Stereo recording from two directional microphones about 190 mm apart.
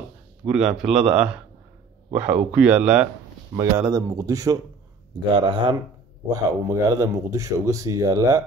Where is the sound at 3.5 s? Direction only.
15° right (ahead or behind).